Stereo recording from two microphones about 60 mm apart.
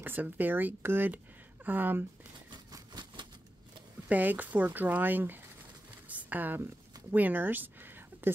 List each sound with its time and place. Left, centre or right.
0.0 s speech: right
4.1 s speech: right
6.0 s a sound: right